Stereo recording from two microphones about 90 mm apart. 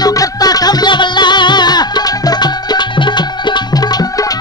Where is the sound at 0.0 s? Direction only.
45° left (ahead or behind).